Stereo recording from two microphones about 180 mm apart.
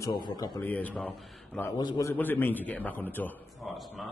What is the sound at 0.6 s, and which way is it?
A man's voice, 10° left (ahead or behind).